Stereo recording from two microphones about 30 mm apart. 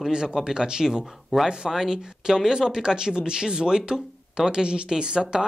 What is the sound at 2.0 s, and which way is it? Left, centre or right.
Speech, right.